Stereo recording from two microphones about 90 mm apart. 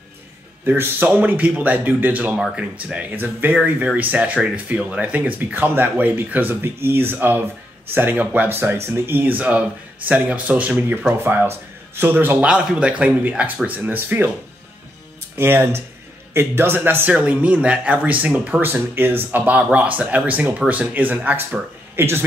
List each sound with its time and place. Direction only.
0.7 s speech: 20° right (ahead or behind)
12.4 s speech: 10° right (ahead or behind)
15.3 s speech: 25° right (ahead or behind)